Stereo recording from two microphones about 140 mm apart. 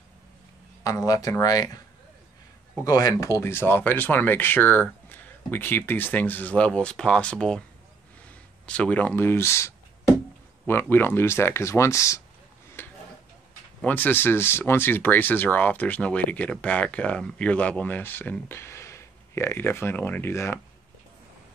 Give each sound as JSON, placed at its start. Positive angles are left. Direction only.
{"t": 0.8, "sound": "speech", "side_deg": 25}
{"t": 2.8, "sound": "speech", "side_deg": 25}
{"t": 8.6, "sound": "speech", "side_deg": 10}
{"t": 12.8, "sound": "a sound", "side_deg": 15}
{"t": 13.7, "sound": "speech", "side_deg": 10}